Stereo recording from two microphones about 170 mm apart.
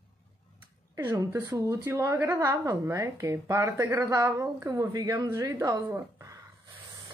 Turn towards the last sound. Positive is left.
turn(degrees=-20)  # may be behind; listen again after turning